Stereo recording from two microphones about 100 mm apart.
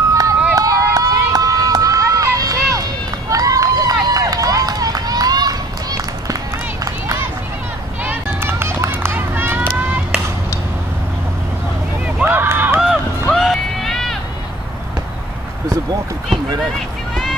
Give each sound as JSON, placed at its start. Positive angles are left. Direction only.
{"t": 0.1, "sound": "run", "side_deg": -35}
{"t": 8.0, "sound": "run", "side_deg": -20}
{"t": 12.3, "sound": "run", "side_deg": -20}
{"t": 13.3, "sound": "run", "side_deg": 5}